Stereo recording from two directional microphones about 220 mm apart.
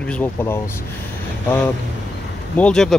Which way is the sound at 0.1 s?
10° left (ahead or behind).